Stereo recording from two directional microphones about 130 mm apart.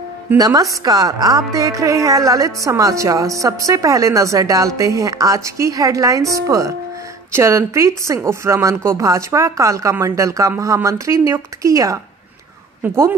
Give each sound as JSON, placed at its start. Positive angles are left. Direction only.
{"t": 0.4, "sound": "a woman's voice", "side_deg": -30}